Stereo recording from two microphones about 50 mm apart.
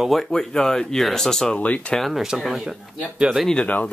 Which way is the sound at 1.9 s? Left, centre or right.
Centre.